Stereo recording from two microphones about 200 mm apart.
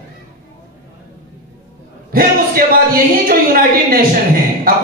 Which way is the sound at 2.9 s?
45° right (ahead or behind).